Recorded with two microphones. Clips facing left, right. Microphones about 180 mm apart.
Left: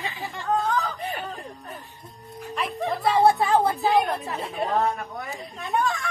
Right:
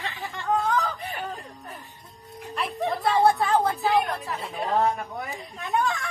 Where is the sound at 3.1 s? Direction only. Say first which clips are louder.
Left 2 dB; 25° left (ahead or behind).